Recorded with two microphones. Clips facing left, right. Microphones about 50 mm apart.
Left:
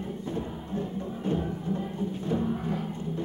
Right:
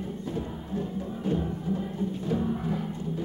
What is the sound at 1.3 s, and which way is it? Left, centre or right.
Music, centre.